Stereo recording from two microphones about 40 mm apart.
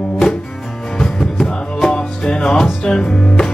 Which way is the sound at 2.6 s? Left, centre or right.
Left.